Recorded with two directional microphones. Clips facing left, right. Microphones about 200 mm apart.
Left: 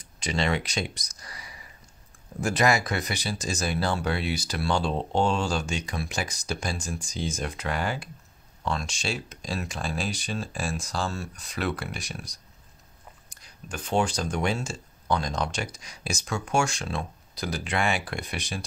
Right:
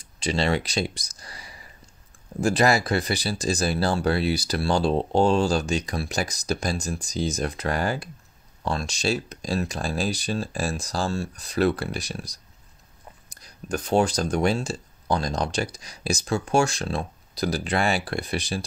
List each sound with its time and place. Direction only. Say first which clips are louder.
0.0 s speech: right 3 dB; 30° right (ahead or behind)